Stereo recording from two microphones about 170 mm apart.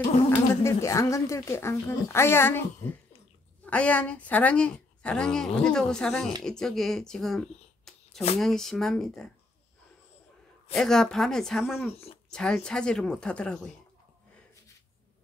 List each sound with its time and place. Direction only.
0.3 s a woman's voice: 15° left (ahead or behind)
3.6 s a woman's voice: 10° left (ahead or behind)
10.7 s speech: 5° left (ahead or behind)